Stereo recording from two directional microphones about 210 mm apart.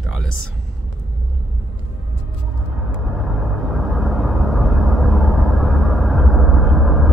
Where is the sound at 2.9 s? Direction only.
Centre (ahead or behind).